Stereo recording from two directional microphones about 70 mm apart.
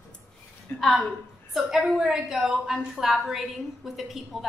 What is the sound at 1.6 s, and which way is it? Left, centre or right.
A woman's voice, centre.